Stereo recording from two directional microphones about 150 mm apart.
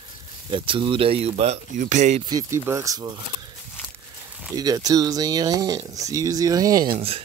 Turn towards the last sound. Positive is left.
turn(degrees=-40)  # may be behind; listen again after turning